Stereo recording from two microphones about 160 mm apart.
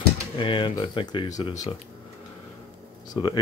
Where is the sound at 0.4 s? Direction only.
30° left (ahead or behind).